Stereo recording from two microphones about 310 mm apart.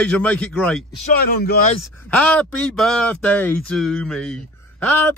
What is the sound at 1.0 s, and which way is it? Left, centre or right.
Speech, left.